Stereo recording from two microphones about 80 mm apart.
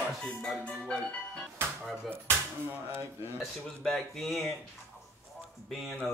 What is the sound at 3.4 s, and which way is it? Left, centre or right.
Speech, centre.